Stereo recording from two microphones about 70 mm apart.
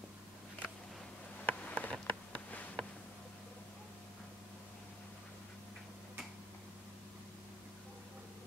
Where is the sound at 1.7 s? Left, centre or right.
Left.